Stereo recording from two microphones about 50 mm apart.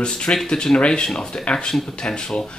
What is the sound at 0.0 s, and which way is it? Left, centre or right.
Speech, centre.